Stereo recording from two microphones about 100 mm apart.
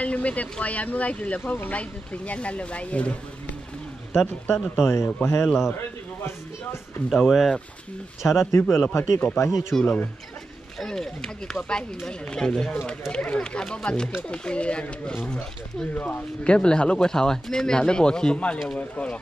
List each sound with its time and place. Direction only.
0.0 s speech: 10° left (ahead or behind)
4.5 s speech: 5° left (ahead or behind)
7.2 s speech: centre (ahead or behind)
8.5 s speech: 25° left (ahead or behind)
9.7 s speech: 5° left (ahead or behind)